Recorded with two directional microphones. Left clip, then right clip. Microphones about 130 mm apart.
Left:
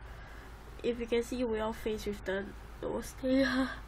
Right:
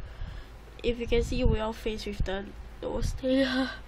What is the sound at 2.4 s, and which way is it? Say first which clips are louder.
Speech: right 2 dB; 20° right (ahead or behind).